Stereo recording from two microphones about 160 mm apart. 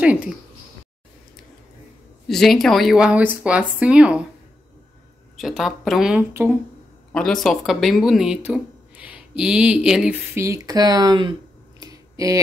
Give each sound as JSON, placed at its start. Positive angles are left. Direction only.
{"t": 2.2, "sound": "speech", "side_deg": 0}
{"t": 5.4, "sound": "speech", "side_deg": 0}
{"t": 6.3, "sound": "speech", "side_deg": -15}
{"t": 7.1, "sound": "speech", "side_deg": 5}
{"t": 10.3, "sound": "speech", "side_deg": -20}
{"t": 11.8, "sound": "a sound", "side_deg": -20}